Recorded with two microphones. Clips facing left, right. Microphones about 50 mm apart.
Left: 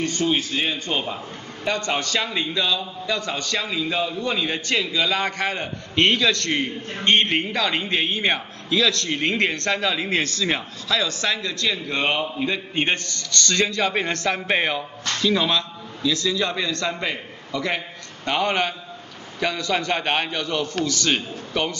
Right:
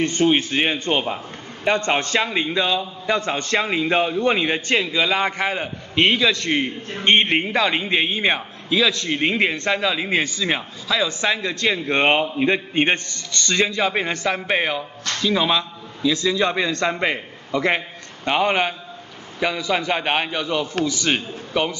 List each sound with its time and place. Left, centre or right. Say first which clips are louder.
0.0 s a man's voice: right 4 dB; right
1.1 s a man's voice: right 2 dB; right